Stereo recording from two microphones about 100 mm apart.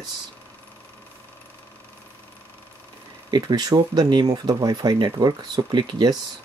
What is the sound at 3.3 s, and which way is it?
Speech, 45° right (ahead or behind).